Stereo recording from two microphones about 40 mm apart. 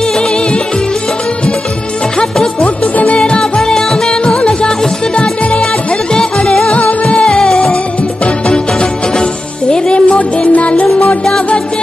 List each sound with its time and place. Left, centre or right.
2.6 s music: left
3.2 s music: centre
6.7 s music: left
7.2 s music: centre
9.2 s music: left